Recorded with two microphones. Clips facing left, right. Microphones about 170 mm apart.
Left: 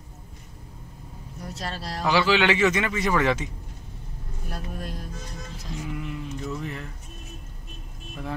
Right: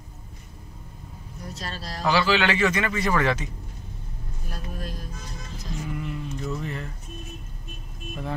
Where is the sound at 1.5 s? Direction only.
65° left (ahead or behind).